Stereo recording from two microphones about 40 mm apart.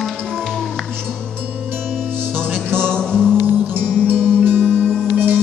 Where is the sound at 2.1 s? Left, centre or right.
Right.